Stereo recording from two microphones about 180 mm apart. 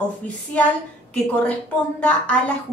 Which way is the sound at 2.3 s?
5° left (ahead or behind).